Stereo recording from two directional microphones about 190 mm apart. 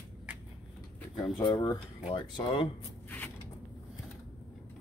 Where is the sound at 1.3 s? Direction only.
20° left (ahead or behind).